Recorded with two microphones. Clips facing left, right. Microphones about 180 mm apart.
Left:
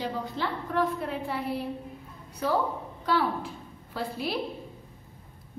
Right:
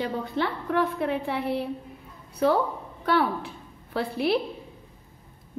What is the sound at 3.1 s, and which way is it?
A woman's voice, 65° right (ahead or behind).